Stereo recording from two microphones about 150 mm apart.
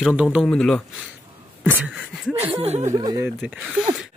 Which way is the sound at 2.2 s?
15° right (ahead or behind).